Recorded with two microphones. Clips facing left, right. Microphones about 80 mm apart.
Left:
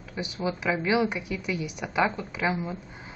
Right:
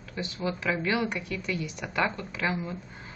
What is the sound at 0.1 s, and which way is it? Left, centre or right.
A woman's voice, centre.